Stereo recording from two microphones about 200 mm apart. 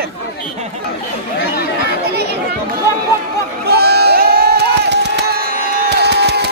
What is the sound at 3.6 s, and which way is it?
Crowd, 55° right (ahead or behind).